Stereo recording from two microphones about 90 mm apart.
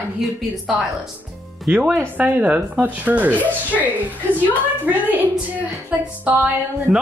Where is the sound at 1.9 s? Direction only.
20° right (ahead or behind).